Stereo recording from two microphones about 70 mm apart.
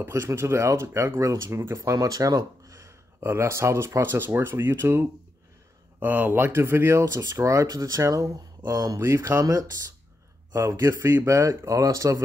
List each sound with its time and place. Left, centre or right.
0.0 s speech: right
1.8 s speech: right
3.2 s speech: right
5.9 s speech: right
9.0 s speech: right